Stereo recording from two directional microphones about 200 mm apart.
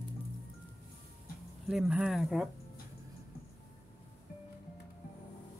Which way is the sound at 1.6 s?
5° right (ahead or behind).